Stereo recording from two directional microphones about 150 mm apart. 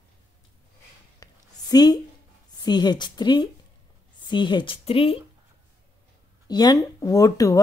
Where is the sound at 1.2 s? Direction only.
25° left (ahead or behind).